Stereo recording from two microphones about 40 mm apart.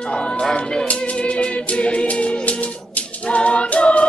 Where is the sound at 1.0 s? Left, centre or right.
Left.